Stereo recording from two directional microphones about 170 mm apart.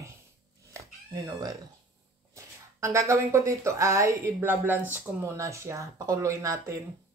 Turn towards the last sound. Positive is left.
turn(degrees=-20)  # may be behind; listen again after turning